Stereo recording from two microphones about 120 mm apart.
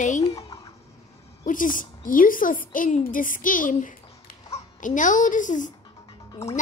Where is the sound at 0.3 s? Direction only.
30° left (ahead or behind).